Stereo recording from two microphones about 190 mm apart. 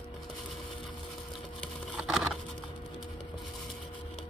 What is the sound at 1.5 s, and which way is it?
Wood, centre (ahead or behind).